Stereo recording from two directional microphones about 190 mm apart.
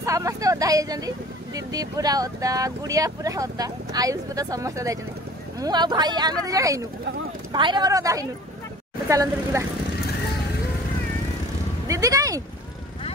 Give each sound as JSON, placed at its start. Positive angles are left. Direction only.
{"t": 0.0, "sound": "speech", "side_deg": -15}
{"t": 11.9, "sound": "speech", "side_deg": -15}